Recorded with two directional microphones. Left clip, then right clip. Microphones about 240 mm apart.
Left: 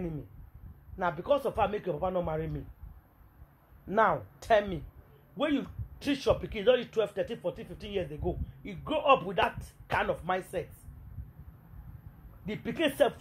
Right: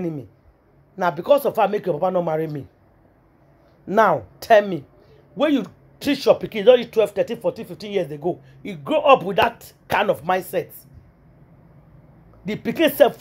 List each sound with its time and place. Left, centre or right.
0.9 s speech: right
3.8 s speech: right
12.4 s speech: centre